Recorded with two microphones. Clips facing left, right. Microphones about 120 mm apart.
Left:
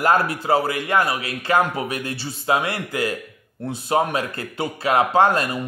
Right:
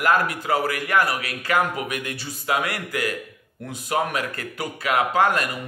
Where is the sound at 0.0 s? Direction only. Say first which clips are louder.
Left 2 dB; 30° left (ahead or behind).